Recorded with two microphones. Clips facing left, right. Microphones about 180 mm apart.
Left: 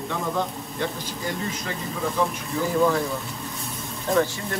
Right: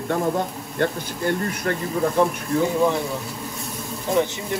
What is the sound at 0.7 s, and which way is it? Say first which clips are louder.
Speech: right 7 dB; 60° right (ahead or behind).